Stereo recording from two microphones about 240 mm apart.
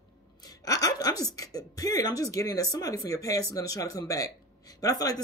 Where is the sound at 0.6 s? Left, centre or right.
Centre.